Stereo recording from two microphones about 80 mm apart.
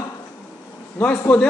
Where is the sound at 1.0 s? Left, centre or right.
Centre.